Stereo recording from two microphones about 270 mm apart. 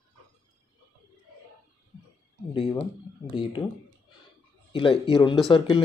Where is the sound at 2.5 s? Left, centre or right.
Centre.